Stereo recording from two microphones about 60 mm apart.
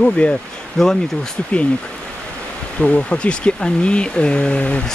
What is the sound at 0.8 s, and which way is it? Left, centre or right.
Speech, centre.